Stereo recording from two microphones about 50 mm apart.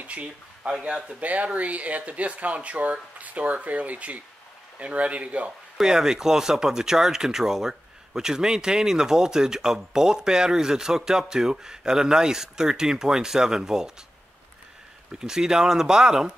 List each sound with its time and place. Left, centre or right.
0.0 s speech: right
1.2 s speech: right
5.8 s speech: centre
15.1 s speech: centre